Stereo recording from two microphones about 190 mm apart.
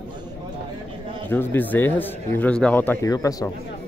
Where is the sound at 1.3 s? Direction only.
10° left (ahead or behind).